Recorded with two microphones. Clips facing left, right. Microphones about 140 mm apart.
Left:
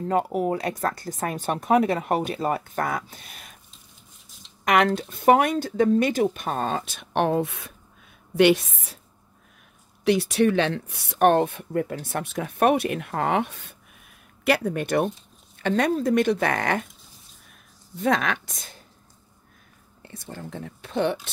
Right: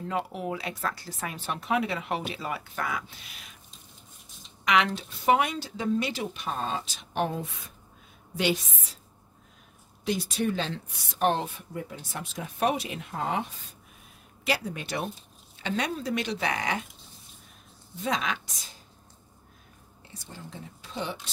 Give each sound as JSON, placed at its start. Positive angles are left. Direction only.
{"t": 0.0, "sound": "speech", "side_deg": 45}
{"t": 4.6, "sound": "speech", "side_deg": 50}
{"t": 10.0, "sound": "speech", "side_deg": 70}
{"t": 18.0, "sound": "speech", "side_deg": 55}
{"t": 20.0, "sound": "speech", "side_deg": 60}